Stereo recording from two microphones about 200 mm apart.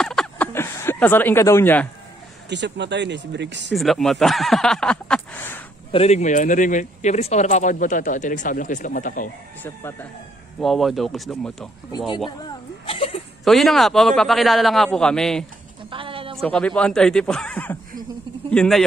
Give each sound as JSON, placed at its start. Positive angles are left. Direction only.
{"t": 0.0, "sound": "a sound", "side_deg": 5}
{"t": 2.5, "sound": "speech", "side_deg": -60}
{"t": 3.7, "sound": "a man's voice", "side_deg": 0}
{"t": 5.9, "sound": "speech", "side_deg": 30}
{"t": 9.6, "sound": "speech", "side_deg": 10}
{"t": 10.6, "sound": "a man's voice", "side_deg": 0}
{"t": 12.8, "sound": "a sound", "side_deg": 30}
{"t": 13.4, "sound": "a man's voice", "side_deg": 0}
{"t": 15.9, "sound": "a sound", "side_deg": -25}
{"t": 16.3, "sound": "a man's voice", "side_deg": 5}